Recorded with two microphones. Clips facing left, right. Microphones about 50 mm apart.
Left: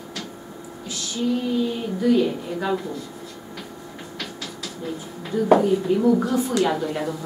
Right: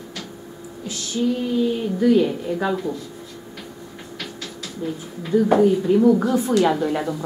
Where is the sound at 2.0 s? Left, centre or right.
Centre.